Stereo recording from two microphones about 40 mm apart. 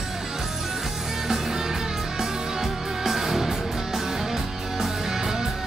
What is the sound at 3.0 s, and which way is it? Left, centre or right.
Music, centre.